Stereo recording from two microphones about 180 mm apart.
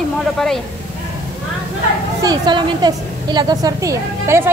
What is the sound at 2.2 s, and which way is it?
A woman's voice, 25° right (ahead or behind).